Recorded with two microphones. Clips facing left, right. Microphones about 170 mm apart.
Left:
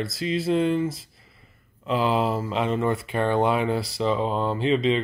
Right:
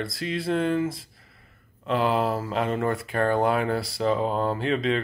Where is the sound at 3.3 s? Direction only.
Centre (ahead or behind).